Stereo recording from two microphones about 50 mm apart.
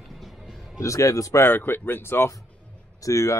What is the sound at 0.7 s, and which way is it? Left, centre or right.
Speech, left.